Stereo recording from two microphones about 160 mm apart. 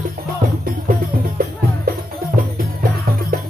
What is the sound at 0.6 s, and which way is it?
Music, 65° right (ahead or behind).